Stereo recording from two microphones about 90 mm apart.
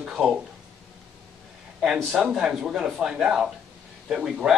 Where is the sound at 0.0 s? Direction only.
5° right (ahead or behind).